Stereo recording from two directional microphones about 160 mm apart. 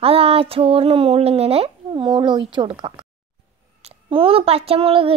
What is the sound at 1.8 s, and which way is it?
A child's voice, 30° right (ahead or behind).